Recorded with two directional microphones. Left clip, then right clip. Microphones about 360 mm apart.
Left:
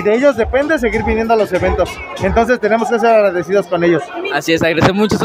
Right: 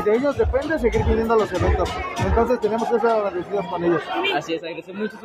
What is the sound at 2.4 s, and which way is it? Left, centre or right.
Speech, left.